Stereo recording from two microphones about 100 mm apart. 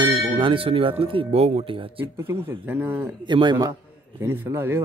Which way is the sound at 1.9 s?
20° right (ahead or behind).